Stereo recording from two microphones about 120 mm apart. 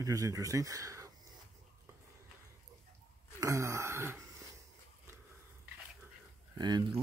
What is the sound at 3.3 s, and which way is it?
Gasp, 25° right (ahead or behind).